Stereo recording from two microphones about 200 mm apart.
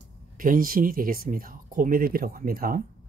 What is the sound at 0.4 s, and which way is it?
Speech, 45° right (ahead or behind).